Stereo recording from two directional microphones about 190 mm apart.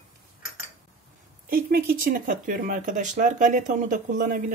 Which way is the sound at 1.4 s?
50° right (ahead or behind).